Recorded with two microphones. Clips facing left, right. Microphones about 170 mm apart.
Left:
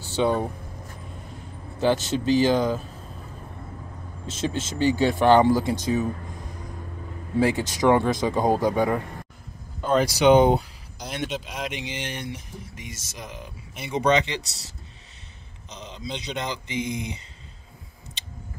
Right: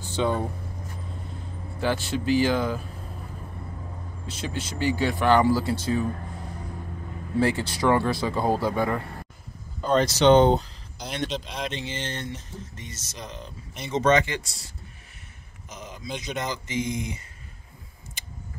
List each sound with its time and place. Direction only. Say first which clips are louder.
0.0 s speech: left 3 dB; 10° left (ahead or behind)
1.8 s speech: left 4 dB; 20° left (ahead or behind)
4.3 s speech: left 5 dB; 25° left (ahead or behind)
7.3 s speech: left 2 dB; 15° left (ahead or behind)
9.8 s speech: even; 5° left (ahead or behind)
16.3 s speech: right 1 dB; 15° left (ahead or behind)